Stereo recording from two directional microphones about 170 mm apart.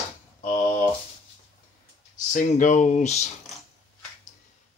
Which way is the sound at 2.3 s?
50° left (ahead or behind).